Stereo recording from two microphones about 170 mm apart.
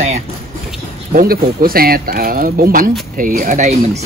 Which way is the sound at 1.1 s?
60° right (ahead or behind).